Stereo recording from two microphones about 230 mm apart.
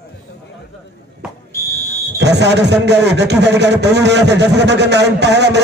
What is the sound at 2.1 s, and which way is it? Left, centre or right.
Speech, right.